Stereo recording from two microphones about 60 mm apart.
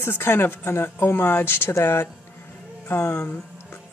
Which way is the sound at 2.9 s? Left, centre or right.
Left.